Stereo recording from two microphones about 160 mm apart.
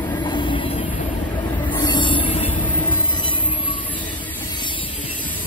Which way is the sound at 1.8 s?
30° left (ahead or behind).